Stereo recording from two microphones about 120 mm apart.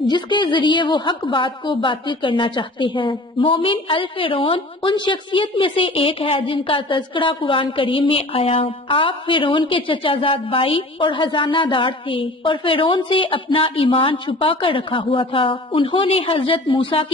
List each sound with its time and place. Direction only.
0.0 s a woman's voice: 40° left (ahead or behind)